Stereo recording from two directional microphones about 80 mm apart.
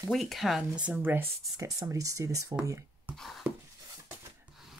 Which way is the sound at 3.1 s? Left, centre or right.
Centre.